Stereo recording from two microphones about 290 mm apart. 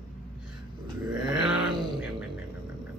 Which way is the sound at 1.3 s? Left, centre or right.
Centre.